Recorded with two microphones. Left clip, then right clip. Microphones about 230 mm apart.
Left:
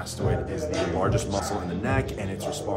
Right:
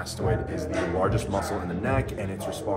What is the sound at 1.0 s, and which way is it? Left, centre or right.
Speech, centre.